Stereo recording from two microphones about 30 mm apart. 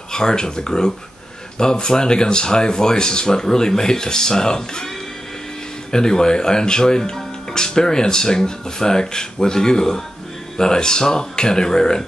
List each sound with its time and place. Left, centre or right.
0.1 s speech: left
5.9 s speech: left